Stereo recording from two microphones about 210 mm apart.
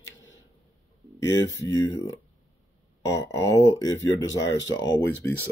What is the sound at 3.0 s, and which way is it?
Speech, 15° left (ahead or behind).